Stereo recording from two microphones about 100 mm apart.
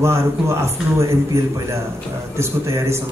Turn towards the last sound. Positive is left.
turn(degrees=-30)  # may be behind; listen again after turning